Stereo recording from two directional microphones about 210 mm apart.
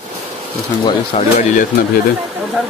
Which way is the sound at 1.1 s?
30° left (ahead or behind).